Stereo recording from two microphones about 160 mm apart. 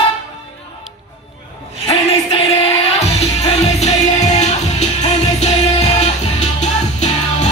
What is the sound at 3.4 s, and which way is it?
Music, 45° left (ahead or behind).